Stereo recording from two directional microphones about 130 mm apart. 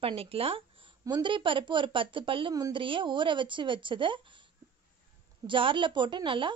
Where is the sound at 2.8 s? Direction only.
40° right (ahead or behind).